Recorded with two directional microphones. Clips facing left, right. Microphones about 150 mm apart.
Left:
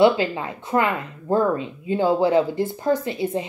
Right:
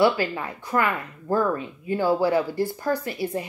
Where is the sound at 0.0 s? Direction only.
20° left (ahead or behind).